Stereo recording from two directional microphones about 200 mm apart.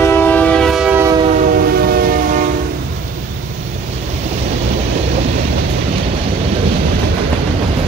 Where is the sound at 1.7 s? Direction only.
50° right (ahead or behind).